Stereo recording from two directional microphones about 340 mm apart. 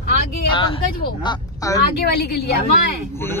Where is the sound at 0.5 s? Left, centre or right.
Centre.